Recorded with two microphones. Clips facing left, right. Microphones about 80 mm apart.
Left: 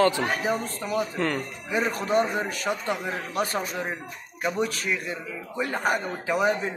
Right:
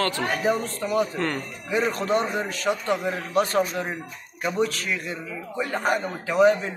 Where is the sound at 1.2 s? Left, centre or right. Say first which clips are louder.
Even; centre.